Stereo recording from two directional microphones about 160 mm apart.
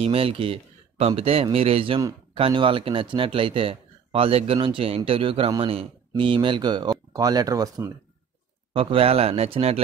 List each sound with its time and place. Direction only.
0.0 s speech: 35° right (ahead or behind)
8.7 s speech: 35° right (ahead or behind)